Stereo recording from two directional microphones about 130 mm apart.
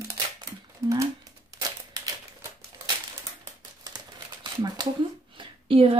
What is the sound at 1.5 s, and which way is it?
Crumpling, 25° right (ahead or behind).